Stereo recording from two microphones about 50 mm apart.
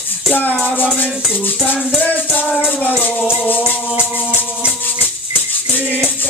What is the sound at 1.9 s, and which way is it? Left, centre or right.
Music, left.